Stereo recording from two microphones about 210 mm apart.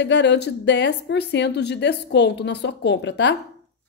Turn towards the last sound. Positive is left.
turn(degrees=55)  # may be behind; listen again after turning